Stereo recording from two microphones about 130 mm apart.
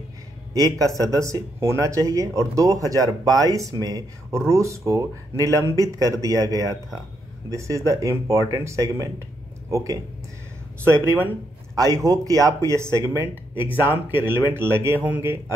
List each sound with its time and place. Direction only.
0.5 s speech: 30° right (ahead or behind)